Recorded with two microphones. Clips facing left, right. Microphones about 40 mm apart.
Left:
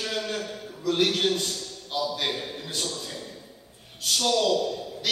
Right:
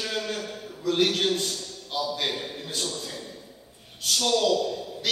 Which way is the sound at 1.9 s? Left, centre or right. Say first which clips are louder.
Even; centre.